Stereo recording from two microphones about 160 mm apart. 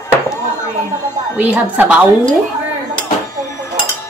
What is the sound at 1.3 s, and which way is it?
Speech, 10° right (ahead or behind).